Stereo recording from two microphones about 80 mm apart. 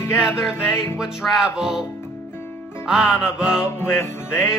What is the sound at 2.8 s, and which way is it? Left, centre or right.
Music, centre.